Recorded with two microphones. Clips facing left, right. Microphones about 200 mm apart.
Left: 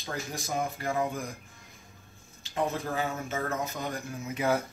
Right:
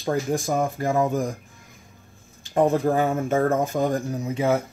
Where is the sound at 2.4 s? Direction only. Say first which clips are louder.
Right 11 dB; 50° right (ahead or behind).